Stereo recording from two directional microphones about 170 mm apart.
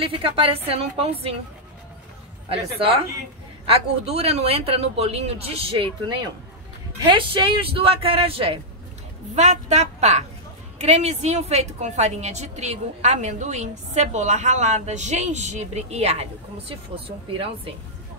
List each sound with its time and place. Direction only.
0.0 s a woman's voice: 30° right (ahead or behind)
2.5 s a woman's voice: 35° right (ahead or behind)
9.3 s a woman's voice: 45° right (ahead or behind)